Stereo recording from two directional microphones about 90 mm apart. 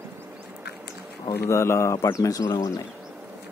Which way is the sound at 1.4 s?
30° left (ahead or behind).